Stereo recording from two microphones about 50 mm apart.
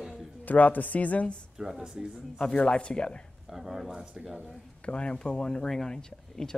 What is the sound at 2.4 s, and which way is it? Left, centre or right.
Speech, centre.